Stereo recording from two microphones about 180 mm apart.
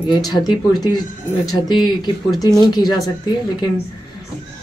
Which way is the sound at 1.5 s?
25° left (ahead or behind).